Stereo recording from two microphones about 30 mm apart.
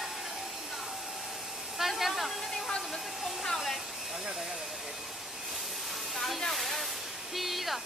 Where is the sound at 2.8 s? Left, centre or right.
Centre.